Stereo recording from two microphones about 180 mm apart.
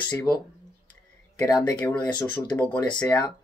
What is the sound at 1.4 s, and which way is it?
Speech, 20° left (ahead or behind).